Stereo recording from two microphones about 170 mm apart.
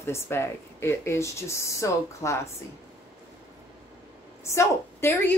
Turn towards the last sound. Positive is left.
turn(degrees=10)  # may be behind; listen again after turning